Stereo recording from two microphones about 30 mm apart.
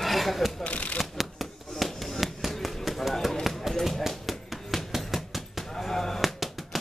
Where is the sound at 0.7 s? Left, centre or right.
Left.